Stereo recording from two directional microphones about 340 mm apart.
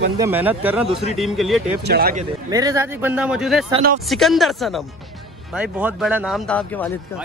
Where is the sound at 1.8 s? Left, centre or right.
Right.